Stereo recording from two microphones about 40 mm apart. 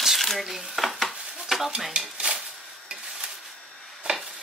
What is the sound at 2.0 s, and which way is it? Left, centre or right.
Stir, centre.